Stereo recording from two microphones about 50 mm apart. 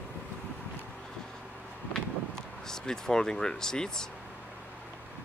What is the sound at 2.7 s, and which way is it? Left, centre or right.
Speech, centre.